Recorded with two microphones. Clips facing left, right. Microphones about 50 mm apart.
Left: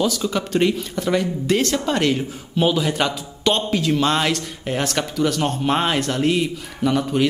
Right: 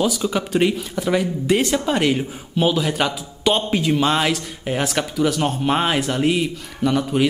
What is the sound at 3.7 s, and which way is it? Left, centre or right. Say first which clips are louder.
Speech: right 1 dB; centre.